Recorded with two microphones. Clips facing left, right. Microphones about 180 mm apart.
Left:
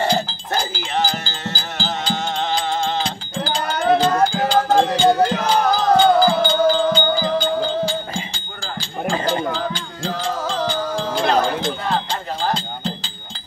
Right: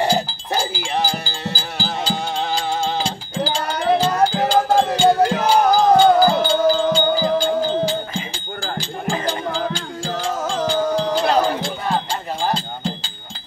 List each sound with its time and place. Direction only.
0.0 s music: 5° right (ahead or behind)
9.5 s music: 10° right (ahead or behind)
11.1 s a sound: 10° right (ahead or behind)
12.4 s music: 10° right (ahead or behind)